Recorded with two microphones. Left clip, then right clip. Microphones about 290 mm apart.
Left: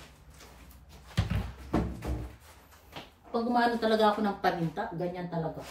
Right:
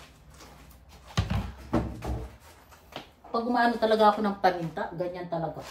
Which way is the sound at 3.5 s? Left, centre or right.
Centre.